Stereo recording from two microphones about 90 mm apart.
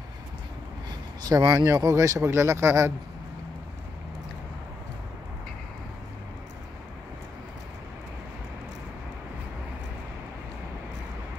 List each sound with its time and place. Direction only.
1.2 s speech: 45° right (ahead or behind); by 2.9 s 30° right (ahead or behind)